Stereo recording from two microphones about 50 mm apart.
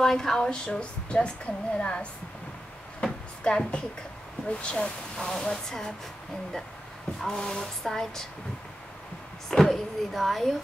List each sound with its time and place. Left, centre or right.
0.0 s a woman's voice: centre
3.0 s a sound: centre
4.5 s speech: left
7.2 s speech: centre
9.5 s speech: centre